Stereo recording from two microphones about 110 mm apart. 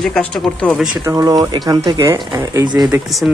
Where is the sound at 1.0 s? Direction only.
30° right (ahead or behind).